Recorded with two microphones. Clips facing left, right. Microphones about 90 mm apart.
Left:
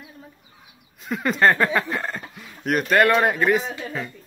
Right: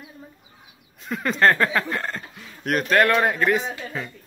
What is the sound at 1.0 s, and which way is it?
Speech, centre (ahead or behind).